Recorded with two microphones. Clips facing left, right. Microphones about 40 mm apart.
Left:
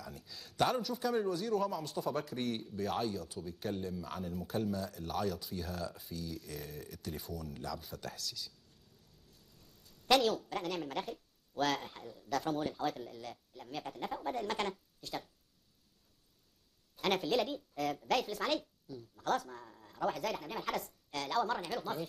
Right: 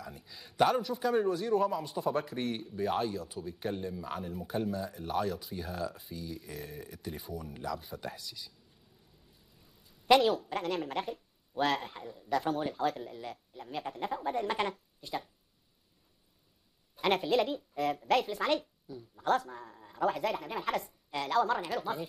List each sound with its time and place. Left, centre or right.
0.0 s a sound: centre
0.7 s a woman's voice: centre
16.9 s a woman's voice: centre